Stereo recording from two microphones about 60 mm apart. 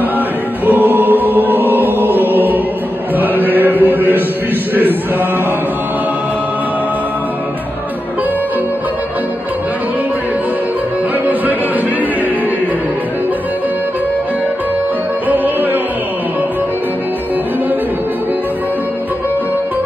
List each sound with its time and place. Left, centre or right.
0.7 s chant: right
15.2 s music: right